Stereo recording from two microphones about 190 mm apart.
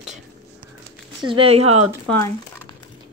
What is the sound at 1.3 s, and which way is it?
Speech, 30° right (ahead or behind).